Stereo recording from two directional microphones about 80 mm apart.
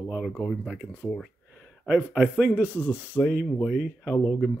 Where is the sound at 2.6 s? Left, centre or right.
Left.